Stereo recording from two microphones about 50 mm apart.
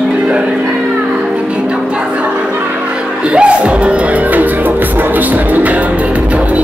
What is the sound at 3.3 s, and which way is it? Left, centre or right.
Music, right.